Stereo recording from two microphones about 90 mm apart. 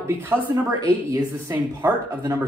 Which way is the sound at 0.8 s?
45° right (ahead or behind).